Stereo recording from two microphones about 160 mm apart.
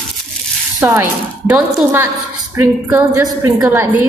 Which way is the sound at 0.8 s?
20° right (ahead or behind).